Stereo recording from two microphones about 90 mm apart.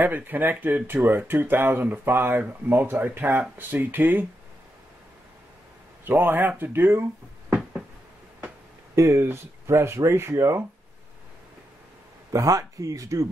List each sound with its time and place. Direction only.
0.0 s speech: 20° right (ahead or behind)
6.0 s speech: 25° right (ahead or behind)
7.4 s a sound: 10° right (ahead or behind)
8.9 s speech: 35° right (ahead or behind)
12.3 s speech: 40° right (ahead or behind)